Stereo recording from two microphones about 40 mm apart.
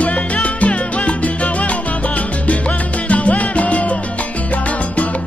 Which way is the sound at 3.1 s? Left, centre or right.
Left.